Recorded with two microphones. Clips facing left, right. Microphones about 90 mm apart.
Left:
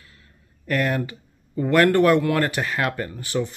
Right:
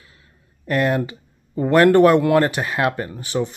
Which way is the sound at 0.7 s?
25° right (ahead or behind).